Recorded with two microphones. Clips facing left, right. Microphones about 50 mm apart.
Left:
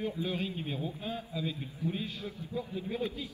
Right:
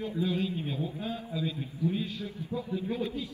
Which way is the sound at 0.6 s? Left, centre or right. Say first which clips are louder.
Right 2 dB; centre.